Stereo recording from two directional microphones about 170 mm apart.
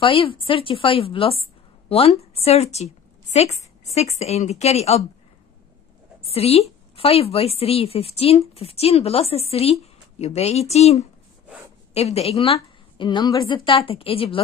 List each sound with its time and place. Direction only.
0.0 s a woman's voice: 30° left (ahead or behind)
6.3 s a woman's voice: 35° left (ahead or behind)